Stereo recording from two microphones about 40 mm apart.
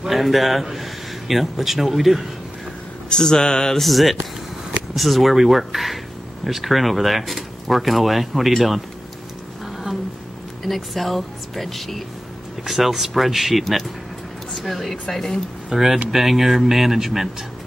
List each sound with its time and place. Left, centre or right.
0.1 s speech: centre
3.1 s a sound: centre
3.8 s speech: centre
10.6 s speech: centre
15.7 s speech: centre